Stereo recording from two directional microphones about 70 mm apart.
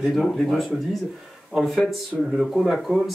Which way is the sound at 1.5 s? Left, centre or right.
Centre.